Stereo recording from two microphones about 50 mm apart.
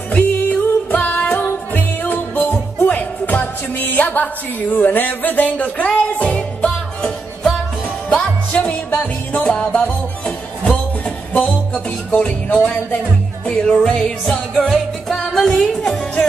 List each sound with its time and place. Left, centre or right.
0.1 s music: left
4.7 s speech: left
6.0 s music: left
8.1 s music: left
13.5 s music: centre